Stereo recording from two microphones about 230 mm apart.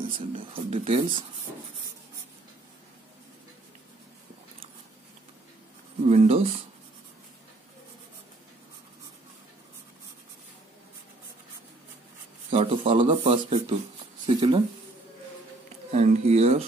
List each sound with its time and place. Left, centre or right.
0.1 s speech: right
6.0 s speech: right
12.4 s speech: right
15.9 s speech: right